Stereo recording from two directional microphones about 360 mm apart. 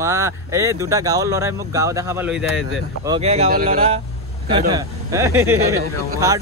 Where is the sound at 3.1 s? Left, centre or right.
Centre.